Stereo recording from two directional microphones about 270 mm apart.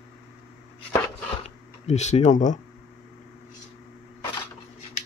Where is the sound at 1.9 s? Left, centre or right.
Left.